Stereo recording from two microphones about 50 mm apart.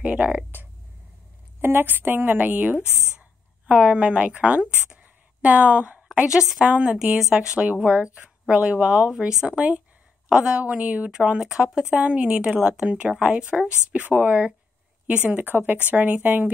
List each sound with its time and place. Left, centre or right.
0.0 s speech: right
1.6 s a woman's voice: right
3.2 s a woman's voice: right
6.6 s speech: centre
7.2 s speech: centre; by 11.1 s right
11.1 s speech: centre
12.8 s speech: right
14.0 s speech: right
15.4 s a woman's voice: right